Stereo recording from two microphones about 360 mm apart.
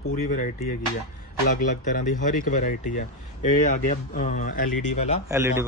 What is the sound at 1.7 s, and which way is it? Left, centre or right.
Speech, left.